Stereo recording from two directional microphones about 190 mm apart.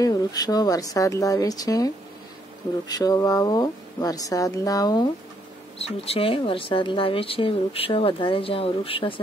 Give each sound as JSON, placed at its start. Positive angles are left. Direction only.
{"t": 0.0, "sound": "speech", "side_deg": 20}
{"t": 2.9, "sound": "speech", "side_deg": 20}
{"t": 5.8, "sound": "speech", "side_deg": 30}